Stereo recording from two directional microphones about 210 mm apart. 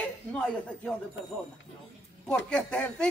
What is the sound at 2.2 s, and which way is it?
Speech, 5° left (ahead or behind).